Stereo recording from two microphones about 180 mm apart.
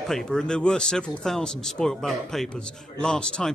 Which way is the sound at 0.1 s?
Centre (ahead or behind).